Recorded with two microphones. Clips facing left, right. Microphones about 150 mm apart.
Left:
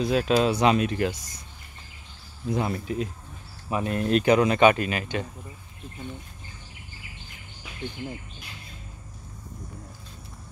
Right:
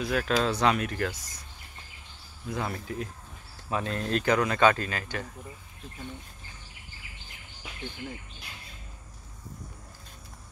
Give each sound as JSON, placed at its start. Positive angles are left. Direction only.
{"t": 0.0, "sound": "speech", "side_deg": 20}
{"t": 2.5, "sound": "speech", "side_deg": 20}